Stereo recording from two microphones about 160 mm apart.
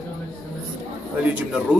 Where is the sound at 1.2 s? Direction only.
10° right (ahead or behind).